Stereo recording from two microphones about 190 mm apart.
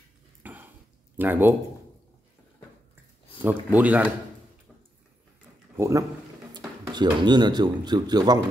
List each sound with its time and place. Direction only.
0.4 s dishes: 10° right (ahead or behind)
1.1 s speech: 10° right (ahead or behind)
3.4 s speech: 10° right (ahead or behind)
5.8 s a man's voice: 15° right (ahead or behind)